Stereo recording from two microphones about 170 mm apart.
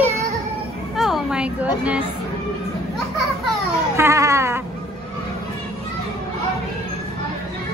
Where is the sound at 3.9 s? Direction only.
15° right (ahead or behind).